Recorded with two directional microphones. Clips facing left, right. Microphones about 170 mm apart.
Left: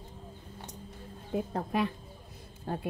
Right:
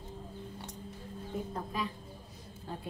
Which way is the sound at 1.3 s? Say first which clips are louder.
Left 7 dB; 70° left (ahead or behind).